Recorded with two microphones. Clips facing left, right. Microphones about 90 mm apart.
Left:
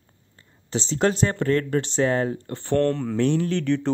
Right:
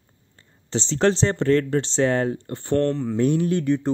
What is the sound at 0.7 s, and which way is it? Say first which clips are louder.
Speech: right 2 dB; 30° right (ahead or behind).